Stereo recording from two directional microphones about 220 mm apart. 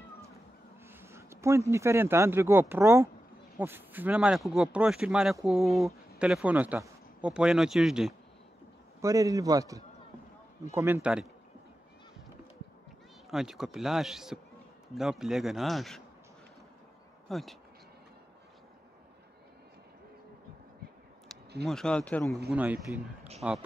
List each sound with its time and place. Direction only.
0.8 s a man's voice: 10° right (ahead or behind)
9.0 s a man's voice: 15° right (ahead or behind)
13.3 s speech: centre (ahead or behind)
17.3 s speech: centre (ahead or behind)
21.6 s speech: 5° left (ahead or behind)
22.5 s a man's voice: 5° right (ahead or behind)